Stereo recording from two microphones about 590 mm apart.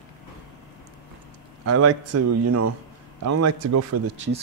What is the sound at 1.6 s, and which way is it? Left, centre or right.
Speech, right.